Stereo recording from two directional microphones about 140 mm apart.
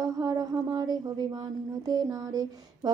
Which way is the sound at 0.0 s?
25° right (ahead or behind).